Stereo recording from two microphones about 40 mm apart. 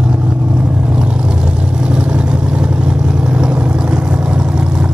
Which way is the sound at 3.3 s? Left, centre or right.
Right.